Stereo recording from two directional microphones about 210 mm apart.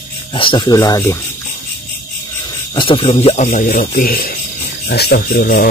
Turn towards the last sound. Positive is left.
turn(degrees=50)  # may be behind; listen again after turning